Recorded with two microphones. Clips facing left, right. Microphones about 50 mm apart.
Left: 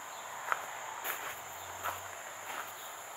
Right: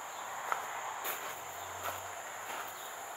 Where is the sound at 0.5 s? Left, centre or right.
Left.